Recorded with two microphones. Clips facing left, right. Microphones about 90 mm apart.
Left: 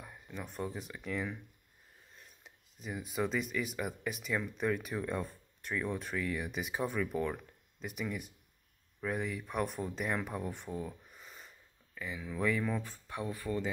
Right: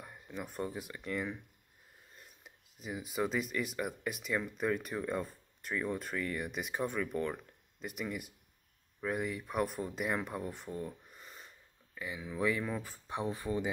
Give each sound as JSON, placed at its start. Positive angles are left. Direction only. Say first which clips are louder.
{"t": 0.0, "sound": "speech", "louder": "right 1 dB", "side_deg": -5}
{"t": 12.9, "sound": "speech", "louder": "right 3 dB", "side_deg": -20}